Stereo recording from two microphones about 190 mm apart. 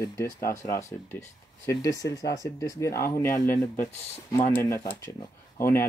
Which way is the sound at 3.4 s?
40° left (ahead or behind).